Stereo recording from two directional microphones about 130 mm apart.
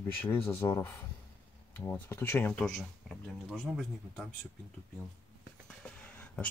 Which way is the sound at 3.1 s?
Centre (ahead or behind).